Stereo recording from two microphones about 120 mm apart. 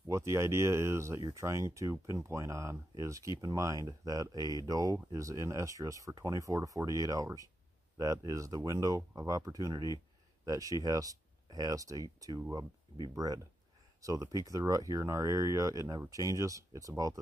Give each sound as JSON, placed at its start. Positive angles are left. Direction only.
{"t": 0.1, "sound": "speech", "side_deg": -25}